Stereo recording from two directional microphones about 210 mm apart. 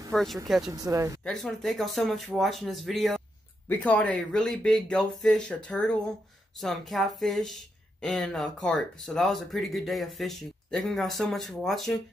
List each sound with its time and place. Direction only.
0.1 s speech: centre (ahead or behind)
0.7 s speech: 15° right (ahead or behind)
1.2 s speech: centre (ahead or behind)